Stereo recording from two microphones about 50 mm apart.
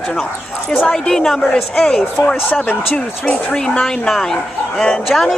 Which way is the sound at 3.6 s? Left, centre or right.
Centre.